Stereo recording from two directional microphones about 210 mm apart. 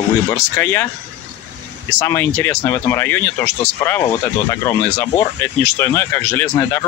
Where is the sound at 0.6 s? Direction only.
10° left (ahead or behind).